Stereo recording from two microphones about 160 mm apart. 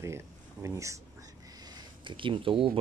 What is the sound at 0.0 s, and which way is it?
Speech, 15° right (ahead or behind).